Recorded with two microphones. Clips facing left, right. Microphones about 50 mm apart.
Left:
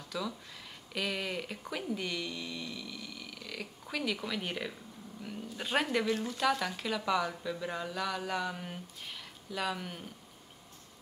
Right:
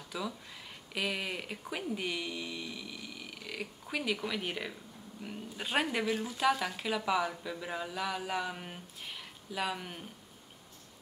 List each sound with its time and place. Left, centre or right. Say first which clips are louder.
0.1 s speech: left 1 dB; centre